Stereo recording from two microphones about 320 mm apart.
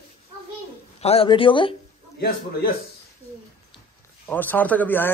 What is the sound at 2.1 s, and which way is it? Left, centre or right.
Speech, left.